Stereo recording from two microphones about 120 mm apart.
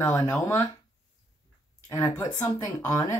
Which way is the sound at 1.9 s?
30° left (ahead or behind).